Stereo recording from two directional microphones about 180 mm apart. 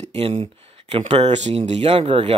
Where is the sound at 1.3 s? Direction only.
40° right (ahead or behind).